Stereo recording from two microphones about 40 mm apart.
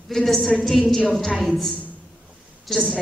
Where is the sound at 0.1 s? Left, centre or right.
Centre.